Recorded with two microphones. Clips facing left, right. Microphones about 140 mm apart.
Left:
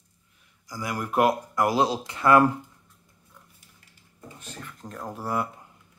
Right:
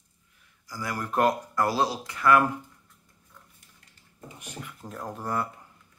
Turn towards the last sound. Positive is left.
turn(degrees=10)  # may be behind; listen again after turning